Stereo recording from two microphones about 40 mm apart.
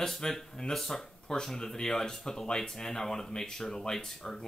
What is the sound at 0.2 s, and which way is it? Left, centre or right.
Speech, centre.